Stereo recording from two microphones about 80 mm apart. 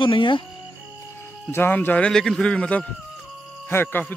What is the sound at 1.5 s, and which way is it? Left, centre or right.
Speech, left.